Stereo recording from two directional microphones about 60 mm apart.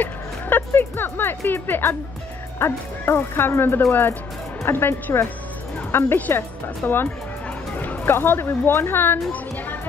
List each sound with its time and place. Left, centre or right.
0.0 s speech: left
6.1 s speech: left